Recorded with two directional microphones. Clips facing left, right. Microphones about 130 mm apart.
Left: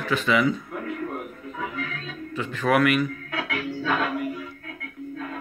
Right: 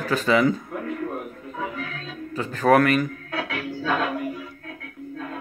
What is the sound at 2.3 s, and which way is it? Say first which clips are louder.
Speech: right 4 dB; 40° right (ahead or behind).